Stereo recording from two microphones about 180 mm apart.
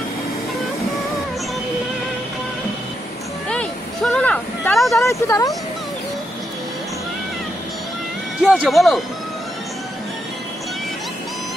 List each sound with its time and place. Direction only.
3.4 s a sound: 5° left (ahead or behind)
5.0 s speech: 15° left (ahead or behind)
8.4 s speech: 5° right (ahead or behind)